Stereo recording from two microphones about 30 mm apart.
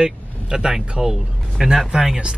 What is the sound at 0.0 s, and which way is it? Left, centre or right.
Vehicle, right.